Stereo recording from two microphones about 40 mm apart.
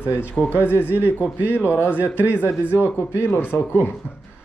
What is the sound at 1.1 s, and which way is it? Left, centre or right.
A man's voice, left.